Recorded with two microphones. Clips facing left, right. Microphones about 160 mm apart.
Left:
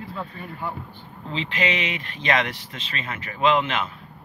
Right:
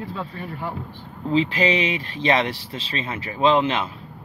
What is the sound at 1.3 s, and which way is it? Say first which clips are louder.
Speech: right 6 dB; 35° right (ahead or behind).